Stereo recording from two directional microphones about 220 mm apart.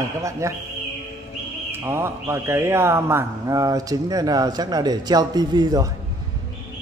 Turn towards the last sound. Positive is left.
turn(degrees=-15)  # may be behind; listen again after turning